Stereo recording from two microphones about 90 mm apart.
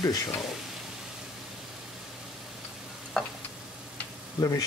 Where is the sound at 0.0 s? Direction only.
45° left (ahead or behind).